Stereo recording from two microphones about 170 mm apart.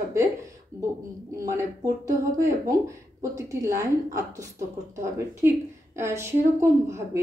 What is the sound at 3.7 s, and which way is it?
Speech, 20° right (ahead or behind).